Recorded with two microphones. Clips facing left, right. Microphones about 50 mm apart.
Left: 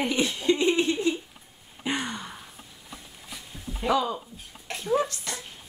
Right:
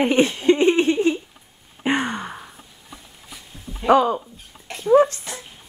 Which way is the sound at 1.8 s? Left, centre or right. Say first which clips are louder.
Right 8 dB; right.